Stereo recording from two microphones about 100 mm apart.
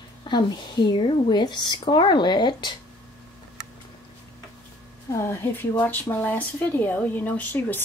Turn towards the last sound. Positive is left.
turn(degrees=15)  # may be behind; listen again after turning